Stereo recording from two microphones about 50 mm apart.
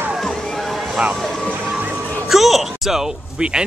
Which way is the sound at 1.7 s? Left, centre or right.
Right.